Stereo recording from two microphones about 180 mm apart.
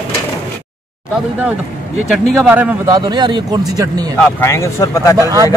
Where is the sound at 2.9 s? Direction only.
25° right (ahead or behind).